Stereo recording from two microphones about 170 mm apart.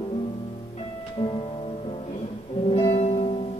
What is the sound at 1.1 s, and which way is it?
Music, 35° left (ahead or behind).